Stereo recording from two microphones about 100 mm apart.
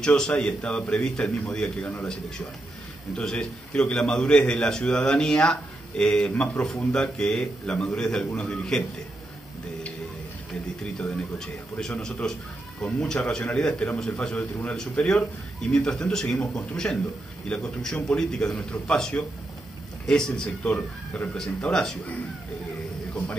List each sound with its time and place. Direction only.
0.0 s a man's voice: 10° left (ahead or behind)
3.2 s a man's voice: 5° left (ahead or behind)
10.5 s a man's voice: centre (ahead or behind)